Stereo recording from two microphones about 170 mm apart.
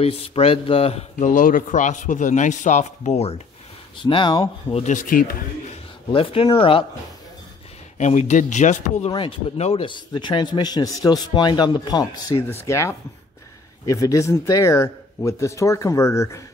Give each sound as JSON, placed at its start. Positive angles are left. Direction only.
{"t": 0.0, "sound": "a man's voice", "side_deg": 35}
{"t": 4.0, "sound": "speech", "side_deg": 30}
{"t": 4.8, "sound": "a man's voice", "side_deg": 50}
{"t": 6.1, "sound": "speech", "side_deg": 35}
{"t": 8.0, "sound": "a man's voice", "side_deg": 45}
{"t": 9.1, "sound": "speech", "side_deg": 35}